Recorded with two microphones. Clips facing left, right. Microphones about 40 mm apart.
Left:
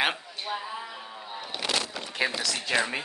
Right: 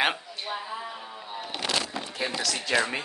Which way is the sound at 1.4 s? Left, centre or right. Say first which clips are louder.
Right 1 dB; right.